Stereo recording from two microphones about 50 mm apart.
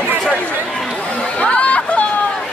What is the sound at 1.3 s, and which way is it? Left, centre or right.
Chatter, left.